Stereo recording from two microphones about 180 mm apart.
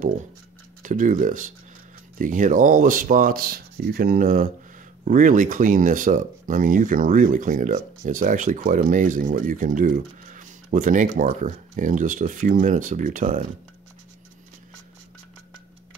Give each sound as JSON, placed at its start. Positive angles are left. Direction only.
{"t": 0.8, "sound": "speech", "side_deg": -45}